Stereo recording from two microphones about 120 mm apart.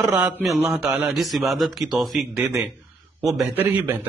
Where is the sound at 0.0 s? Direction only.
15° right (ahead or behind).